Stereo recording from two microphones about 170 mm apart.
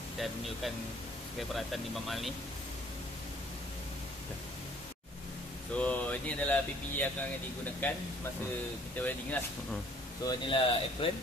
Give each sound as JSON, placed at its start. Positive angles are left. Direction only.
{"t": 0.2, "sound": "speech", "side_deg": 0}
{"t": 5.8, "sound": "a sound", "side_deg": 10}
{"t": 10.2, "sound": "speech", "side_deg": 30}